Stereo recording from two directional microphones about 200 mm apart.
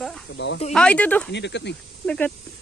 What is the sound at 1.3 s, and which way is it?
Speech, 60° left (ahead or behind).